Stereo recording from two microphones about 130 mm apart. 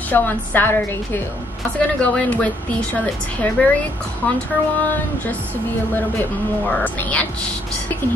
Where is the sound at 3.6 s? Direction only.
10° left (ahead or behind).